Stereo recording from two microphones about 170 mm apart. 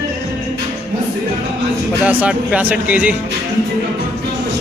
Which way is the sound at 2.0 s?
5° right (ahead or behind).